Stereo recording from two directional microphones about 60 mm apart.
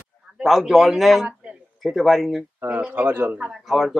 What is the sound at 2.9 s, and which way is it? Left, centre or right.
Speech, right.